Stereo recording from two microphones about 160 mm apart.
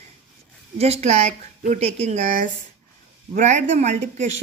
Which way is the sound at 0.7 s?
40° right (ahead or behind).